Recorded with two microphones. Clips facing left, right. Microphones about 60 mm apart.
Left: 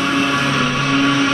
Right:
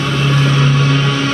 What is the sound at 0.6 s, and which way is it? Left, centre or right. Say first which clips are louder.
Vehicle: right 1 dB; left.